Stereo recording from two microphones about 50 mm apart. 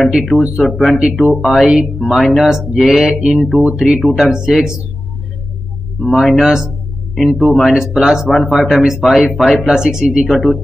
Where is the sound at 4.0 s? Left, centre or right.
Centre.